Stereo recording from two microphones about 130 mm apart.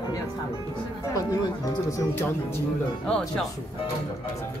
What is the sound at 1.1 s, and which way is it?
Speech, 30° left (ahead or behind).